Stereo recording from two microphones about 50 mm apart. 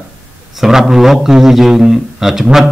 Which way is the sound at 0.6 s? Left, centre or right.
Centre.